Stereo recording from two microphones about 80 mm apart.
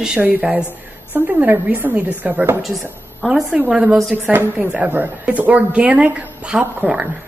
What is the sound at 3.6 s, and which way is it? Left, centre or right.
A woman's voice, centre.